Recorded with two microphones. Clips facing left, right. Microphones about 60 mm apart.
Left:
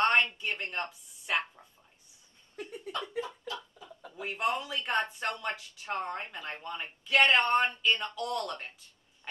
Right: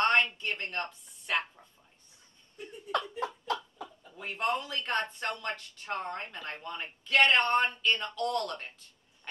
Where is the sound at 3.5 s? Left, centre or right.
Right.